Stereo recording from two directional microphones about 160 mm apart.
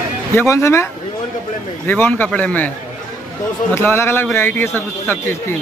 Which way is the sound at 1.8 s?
10° left (ahead or behind).